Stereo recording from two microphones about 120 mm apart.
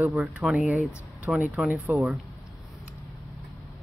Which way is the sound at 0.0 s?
10° right (ahead or behind).